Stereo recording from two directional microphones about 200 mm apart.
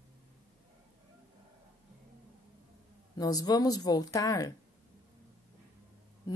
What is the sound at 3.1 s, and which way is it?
Speech, 20° left (ahead or behind).